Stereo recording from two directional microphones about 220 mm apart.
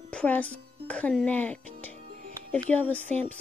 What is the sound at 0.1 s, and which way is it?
A woman's voice, 5° left (ahead or behind).